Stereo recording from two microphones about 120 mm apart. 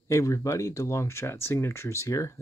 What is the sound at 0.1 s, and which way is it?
Speech, 25° left (ahead or behind).